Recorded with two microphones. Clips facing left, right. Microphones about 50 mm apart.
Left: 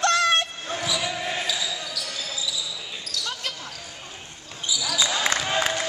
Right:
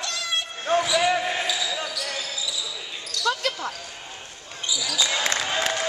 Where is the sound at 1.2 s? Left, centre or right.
Centre.